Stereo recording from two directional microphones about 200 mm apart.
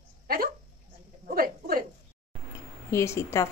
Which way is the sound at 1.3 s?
45° right (ahead or behind).